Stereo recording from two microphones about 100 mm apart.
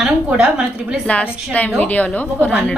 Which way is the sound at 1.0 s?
15° left (ahead or behind).